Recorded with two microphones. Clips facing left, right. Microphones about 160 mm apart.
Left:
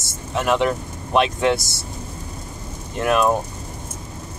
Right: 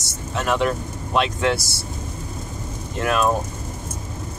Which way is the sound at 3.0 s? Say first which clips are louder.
Left 2 dB; 10° left (ahead or behind).